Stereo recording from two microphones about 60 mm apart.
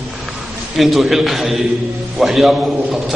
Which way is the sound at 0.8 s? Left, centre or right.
Centre.